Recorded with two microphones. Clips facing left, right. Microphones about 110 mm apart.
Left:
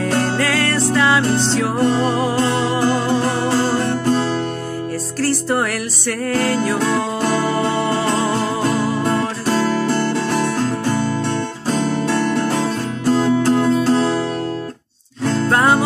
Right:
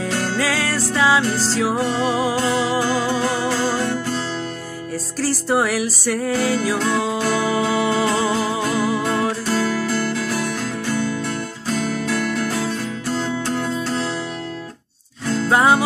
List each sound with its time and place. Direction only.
0.2 s music: centre (ahead or behind)
5.2 s music: centre (ahead or behind)
9.5 s music: 45° left (ahead or behind)
15.5 s music: 5° right (ahead or behind)